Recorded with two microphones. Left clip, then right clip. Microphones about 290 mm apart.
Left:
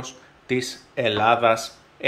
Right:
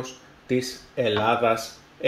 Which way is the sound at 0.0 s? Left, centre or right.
Centre.